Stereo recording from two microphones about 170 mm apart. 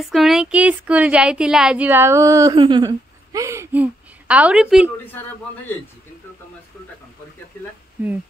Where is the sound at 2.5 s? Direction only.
30° right (ahead or behind); by 4.9 s 5° right (ahead or behind).